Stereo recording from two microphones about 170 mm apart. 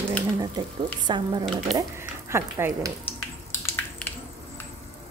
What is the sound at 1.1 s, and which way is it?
Speech, 25° right (ahead or behind).